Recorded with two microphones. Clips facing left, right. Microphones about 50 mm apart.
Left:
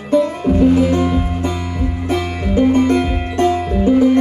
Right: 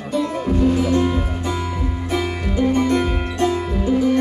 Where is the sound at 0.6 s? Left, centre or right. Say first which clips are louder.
Left 4 dB; left.